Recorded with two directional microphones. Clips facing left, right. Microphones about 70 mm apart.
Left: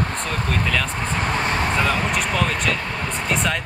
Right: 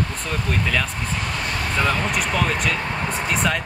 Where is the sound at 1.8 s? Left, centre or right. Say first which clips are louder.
Left 1 dB; centre.